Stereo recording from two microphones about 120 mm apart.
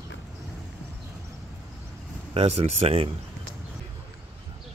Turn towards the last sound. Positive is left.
turn(degrees=-55)  # may be behind; listen again after turning